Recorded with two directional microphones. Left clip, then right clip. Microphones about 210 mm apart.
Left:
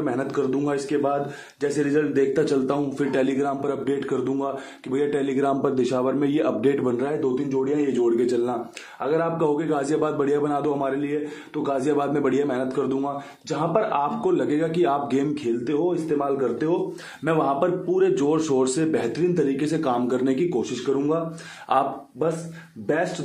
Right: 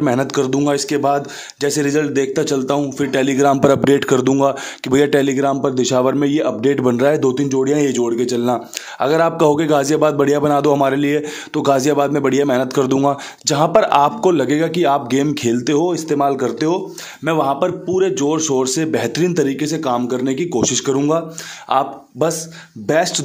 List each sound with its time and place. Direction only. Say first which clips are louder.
0.0 s speech: right 8 dB; 45° right (ahead or behind)
8.0 s speech: right 3 dB; 35° right (ahead or behind)
9.0 s a man's voice: right 9 dB; 60° right (ahead or behind); by 15.4 s 35° right (ahead or behind)
15.6 s a man's voice: right 6 dB; 50° right (ahead or behind)
17.2 s speech: right 5 dB; 30° right (ahead or behind)
20.8 s a man's voice: right 4 dB; 45° right (ahead or behind)
21.7 s speech: right 5 dB; 30° right (ahead or behind)
22.8 s a man's voice: right 8 dB; 45° right (ahead or behind)